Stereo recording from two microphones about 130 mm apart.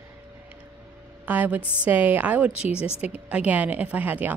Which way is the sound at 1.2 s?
15° right (ahead or behind).